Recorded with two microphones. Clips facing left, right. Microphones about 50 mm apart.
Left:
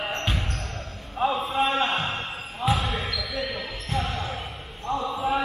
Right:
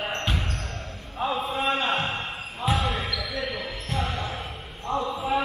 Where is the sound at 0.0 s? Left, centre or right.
Centre.